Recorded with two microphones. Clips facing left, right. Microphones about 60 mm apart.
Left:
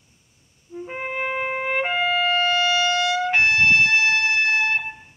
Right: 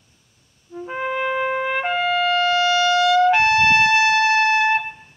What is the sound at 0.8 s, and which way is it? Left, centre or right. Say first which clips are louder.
Trumpet: right 4 dB; left.